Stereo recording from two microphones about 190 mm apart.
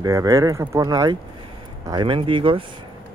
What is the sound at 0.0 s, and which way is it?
Speech, 20° right (ahead or behind).